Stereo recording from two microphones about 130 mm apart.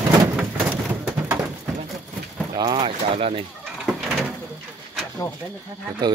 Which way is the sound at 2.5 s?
35° right (ahead or behind).